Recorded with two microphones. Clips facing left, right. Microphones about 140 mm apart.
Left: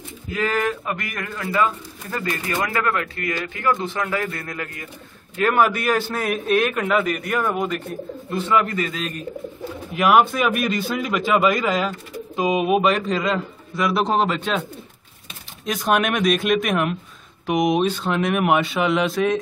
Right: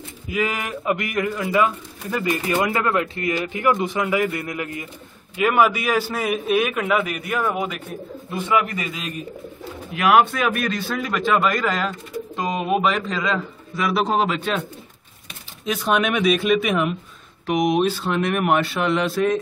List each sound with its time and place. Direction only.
0.3 s a man's voice: 15° right (ahead or behind)
15.8 s a man's voice: centre (ahead or behind)